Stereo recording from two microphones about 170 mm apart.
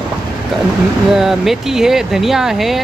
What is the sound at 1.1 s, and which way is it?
Speech, centre (ahead or behind).